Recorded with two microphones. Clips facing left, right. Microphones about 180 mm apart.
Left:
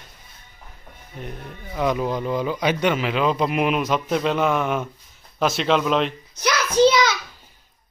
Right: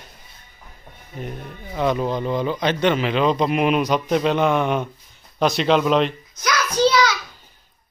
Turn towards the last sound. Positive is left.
turn(degrees=20)  # may be behind; listen again after turning